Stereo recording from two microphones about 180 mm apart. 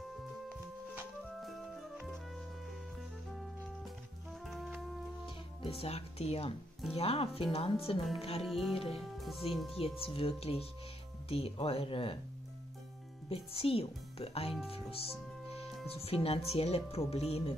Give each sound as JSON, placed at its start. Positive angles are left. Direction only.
{"t": 0.9, "sound": "music", "side_deg": 0}
{"t": 4.5, "sound": "music", "side_deg": 0}
{"t": 5.2, "sound": "speech", "side_deg": 30}
{"t": 8.5, "sound": "speech", "side_deg": 0}
{"t": 9.8, "sound": "speech", "side_deg": 30}
{"t": 13.3, "sound": "speech", "side_deg": 30}